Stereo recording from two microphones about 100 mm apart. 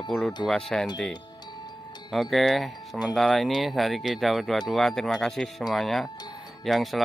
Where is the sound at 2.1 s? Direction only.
Centre (ahead or behind).